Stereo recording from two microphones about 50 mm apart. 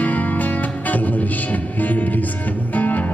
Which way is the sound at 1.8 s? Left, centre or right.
Left.